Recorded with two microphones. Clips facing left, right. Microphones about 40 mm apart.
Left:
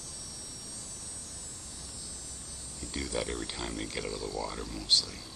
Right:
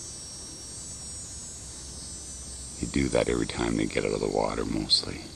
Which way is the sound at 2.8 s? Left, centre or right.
Centre.